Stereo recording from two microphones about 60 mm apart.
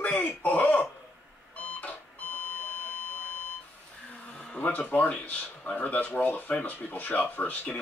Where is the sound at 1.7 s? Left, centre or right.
Left.